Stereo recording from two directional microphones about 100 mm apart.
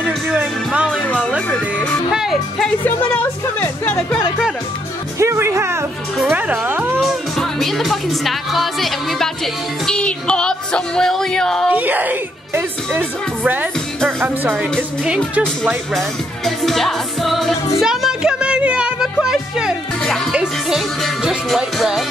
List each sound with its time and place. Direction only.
0.0 s music: 10° right (ahead or behind)
1.0 s music: 15° left (ahead or behind)
2.1 s speech: 5° right (ahead or behind)
2.8 s music: 15° left (ahead or behind)
5.2 s music: 30° right (ahead or behind)
7.0 s music: centre (ahead or behind)
11.7 s speech: 15° right (ahead or behind)
15.9 s speech: centre (ahead or behind)
19.2 s music: 5° right (ahead or behind)